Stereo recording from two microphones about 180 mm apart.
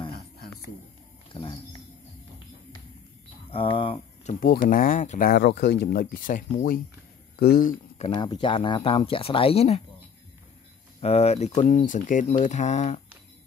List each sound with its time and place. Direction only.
1.3 s speech: 25° left (ahead or behind)
3.4 s speech: 30° left (ahead or behind)
4.5 s speech: 50° left (ahead or behind)
5.3 s speech: 70° left (ahead or behind)
8.1 s speech: 25° left (ahead or behind)
11.0 s speech: 35° left (ahead or behind)